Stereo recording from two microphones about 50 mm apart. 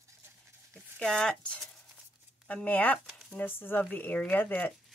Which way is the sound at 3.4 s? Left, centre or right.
Left.